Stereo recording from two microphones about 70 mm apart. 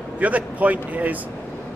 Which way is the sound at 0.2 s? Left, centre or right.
Right.